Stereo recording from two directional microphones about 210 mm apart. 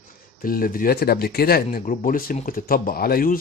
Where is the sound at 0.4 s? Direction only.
45° left (ahead or behind).